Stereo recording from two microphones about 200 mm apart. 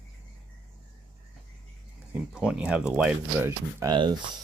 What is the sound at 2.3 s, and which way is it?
Speech, 5° right (ahead or behind).